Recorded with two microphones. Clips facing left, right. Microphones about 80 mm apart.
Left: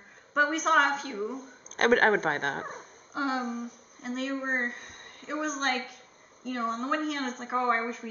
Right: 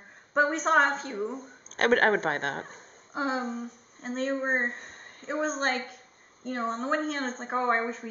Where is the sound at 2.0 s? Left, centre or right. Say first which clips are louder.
Even; right.